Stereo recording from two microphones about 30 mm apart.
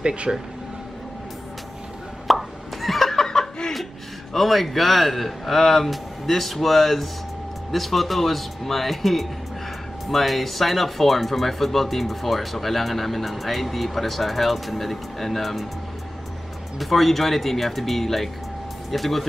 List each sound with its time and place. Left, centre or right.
0.0 s speech: right
2.2 s plop: centre
3.2 s snicker: left
4.3 s speech: centre
16.7 s speech: centre